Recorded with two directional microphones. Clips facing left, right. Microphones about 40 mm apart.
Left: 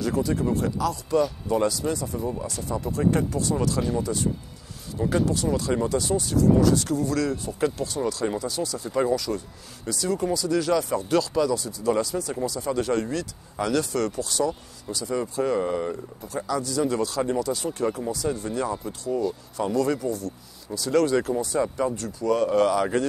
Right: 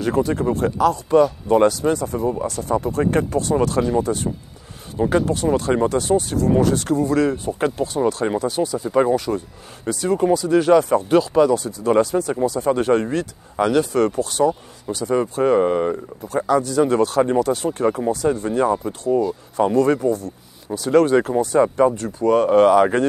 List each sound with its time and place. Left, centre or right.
0.0 s speech: right
17.6 s speech: right